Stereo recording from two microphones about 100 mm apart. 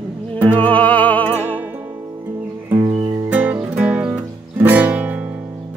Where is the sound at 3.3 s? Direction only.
15° right (ahead or behind).